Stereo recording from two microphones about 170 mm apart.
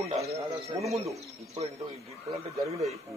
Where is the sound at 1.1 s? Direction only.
35° right (ahead or behind).